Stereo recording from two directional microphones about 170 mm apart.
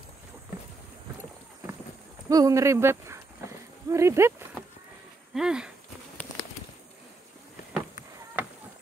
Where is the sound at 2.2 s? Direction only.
20° right (ahead or behind).